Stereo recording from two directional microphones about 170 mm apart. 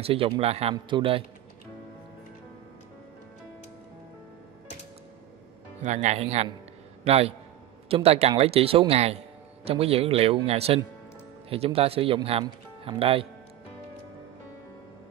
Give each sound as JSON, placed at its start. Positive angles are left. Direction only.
{"t": 0.0, "sound": "speech", "side_deg": -35}
{"t": 5.8, "sound": "speech", "side_deg": -45}